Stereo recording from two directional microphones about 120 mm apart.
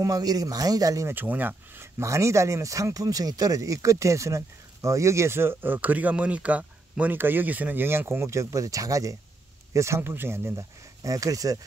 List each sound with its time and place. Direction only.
0.0 s speech: 30° right (ahead or behind)